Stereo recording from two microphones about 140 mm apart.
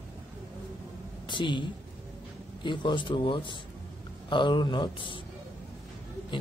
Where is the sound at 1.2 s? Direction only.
35° left (ahead or behind).